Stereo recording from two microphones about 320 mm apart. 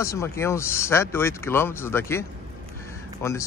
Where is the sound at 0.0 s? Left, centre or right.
Centre.